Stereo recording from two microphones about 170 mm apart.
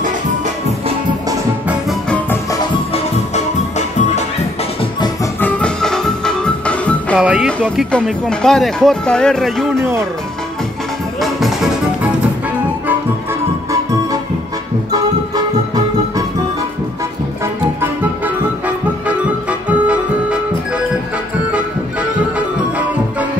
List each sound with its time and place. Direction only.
1.7 s music: centre (ahead or behind)
2.9 s music: 40° left (ahead or behind)
5.4 s music: 5° left (ahead or behind)
7.2 s speech: 5° right (ahead or behind)
9.8 s speech: 15° right (ahead or behind)
11.1 s music: centre (ahead or behind)
14.9 s music: 20° right (ahead or behind)
19.7 s music: 5° right (ahead or behind)